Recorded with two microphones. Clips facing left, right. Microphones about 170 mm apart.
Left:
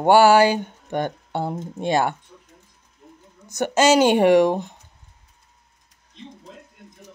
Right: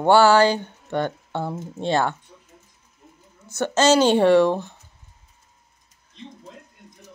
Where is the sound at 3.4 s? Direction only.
15° left (ahead or behind).